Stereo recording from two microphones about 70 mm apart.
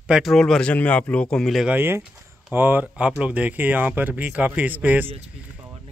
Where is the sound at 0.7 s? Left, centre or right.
Left.